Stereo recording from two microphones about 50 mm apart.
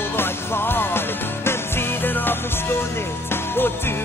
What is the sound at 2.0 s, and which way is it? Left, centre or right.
Music, left.